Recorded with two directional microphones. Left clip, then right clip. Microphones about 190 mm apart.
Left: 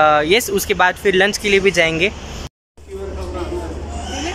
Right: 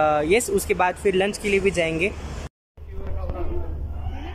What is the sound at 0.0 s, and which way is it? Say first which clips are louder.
Speech: left 6 dB; 10° right (ahead or behind).